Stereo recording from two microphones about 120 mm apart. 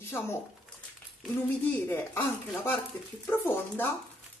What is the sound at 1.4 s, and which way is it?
Speech, 15° left (ahead or behind).